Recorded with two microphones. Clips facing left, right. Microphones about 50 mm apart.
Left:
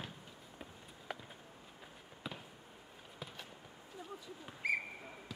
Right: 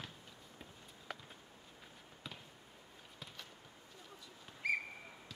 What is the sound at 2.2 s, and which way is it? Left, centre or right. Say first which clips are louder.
Basketball bounce: left 5 dB; centre.